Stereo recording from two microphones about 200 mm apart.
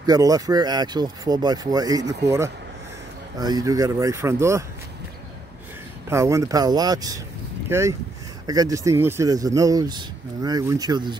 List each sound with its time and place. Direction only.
0.0 s speech: 20° right (ahead or behind)
6.0 s speech: 15° right (ahead or behind)